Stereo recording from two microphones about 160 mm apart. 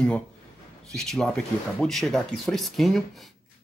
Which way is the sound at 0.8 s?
Centre (ahead or behind).